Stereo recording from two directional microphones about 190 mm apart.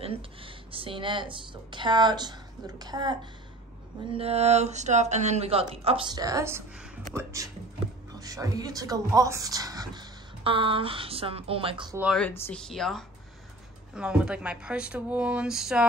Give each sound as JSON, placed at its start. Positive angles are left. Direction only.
{"t": 0.0, "sound": "a woman's voice", "side_deg": -30}
{"t": 4.1, "sound": "speech", "side_deg": -30}
{"t": 6.1, "sound": "a woman's voice", "side_deg": -15}
{"t": 12.0, "sound": "speech", "side_deg": 0}